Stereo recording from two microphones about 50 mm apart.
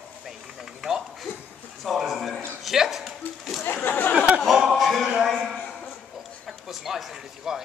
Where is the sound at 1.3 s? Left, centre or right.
Left.